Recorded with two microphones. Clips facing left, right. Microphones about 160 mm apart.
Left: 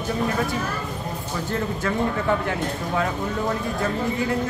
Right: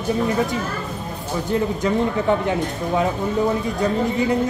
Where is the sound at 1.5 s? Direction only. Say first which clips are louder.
Right 5 dB; 20° right (ahead or behind).